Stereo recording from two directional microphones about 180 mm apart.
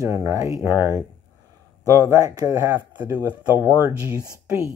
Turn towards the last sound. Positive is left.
turn(degrees=-15)  # may be behind; listen again after turning